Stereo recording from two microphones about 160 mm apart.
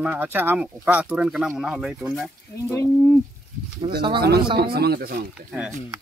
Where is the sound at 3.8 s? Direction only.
40° right (ahead or behind).